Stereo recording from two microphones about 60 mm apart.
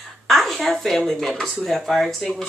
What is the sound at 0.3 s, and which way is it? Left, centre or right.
A woman's voice, centre.